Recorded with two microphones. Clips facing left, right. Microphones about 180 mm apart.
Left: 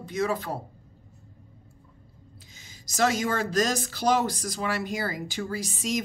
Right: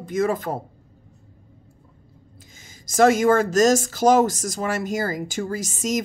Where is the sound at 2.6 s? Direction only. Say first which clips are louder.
Right 8 dB; 50° right (ahead or behind).